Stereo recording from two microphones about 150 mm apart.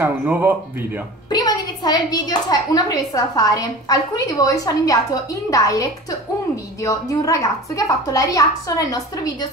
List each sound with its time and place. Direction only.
0.0 s speech: 10° right (ahead or behind)
1.3 s a woman's voice: 30° left (ahead or behind)